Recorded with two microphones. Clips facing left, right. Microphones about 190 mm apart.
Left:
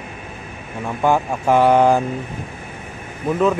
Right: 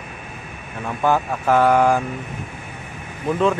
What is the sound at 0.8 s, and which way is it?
Speech, 10° left (ahead or behind).